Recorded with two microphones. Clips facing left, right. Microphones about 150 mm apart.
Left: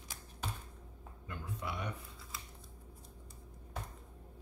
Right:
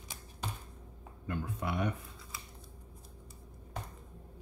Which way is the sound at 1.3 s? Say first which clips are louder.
Right 6 dB; 55° right (ahead or behind).